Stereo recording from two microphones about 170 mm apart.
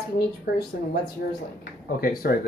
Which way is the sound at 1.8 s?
60° left (ahead or behind).